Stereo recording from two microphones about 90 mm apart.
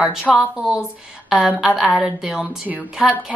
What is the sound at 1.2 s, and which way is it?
A woman's voice, 5° right (ahead or behind).